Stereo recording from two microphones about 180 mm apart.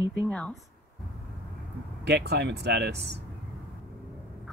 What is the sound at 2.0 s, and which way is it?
Speech, 65° right (ahead or behind).